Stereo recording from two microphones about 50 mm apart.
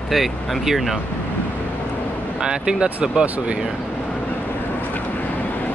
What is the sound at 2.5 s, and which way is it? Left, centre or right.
Speech, centre.